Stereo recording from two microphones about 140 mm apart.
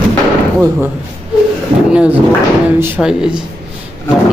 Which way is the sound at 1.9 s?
10° right (ahead or behind).